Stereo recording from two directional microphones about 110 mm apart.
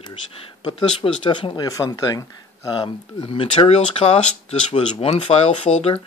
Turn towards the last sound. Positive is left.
turn(degrees=70)  # may be behind; listen again after turning